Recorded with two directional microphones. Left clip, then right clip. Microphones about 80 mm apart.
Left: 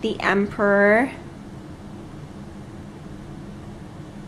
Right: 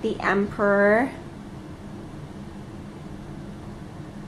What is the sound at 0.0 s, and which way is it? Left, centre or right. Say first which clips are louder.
A woman's voice: left 2 dB; left.